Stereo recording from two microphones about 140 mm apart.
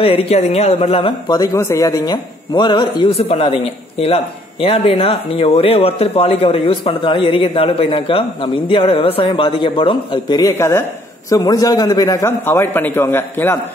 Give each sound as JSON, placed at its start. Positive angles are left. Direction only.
{"t": 0.0, "sound": "speech", "side_deg": 40}
{"t": 1.4, "sound": "speech", "side_deg": 20}
{"t": 3.2, "sound": "speech", "side_deg": 45}
{"t": 10.5, "sound": "a man's voice", "side_deg": 15}